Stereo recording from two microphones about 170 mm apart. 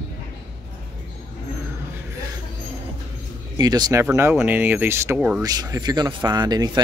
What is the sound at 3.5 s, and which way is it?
Speech, 25° right (ahead or behind).